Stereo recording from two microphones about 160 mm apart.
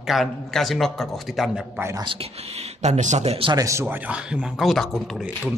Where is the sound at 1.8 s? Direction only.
20° right (ahead or behind).